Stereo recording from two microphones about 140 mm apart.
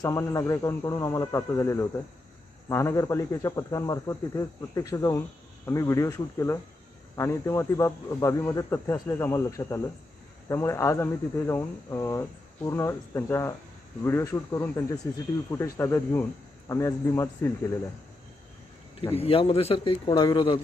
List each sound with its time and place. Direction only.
0.0 s speech: 20° left (ahead or behind)
19.1 s a man's voice: 45° left (ahead or behind)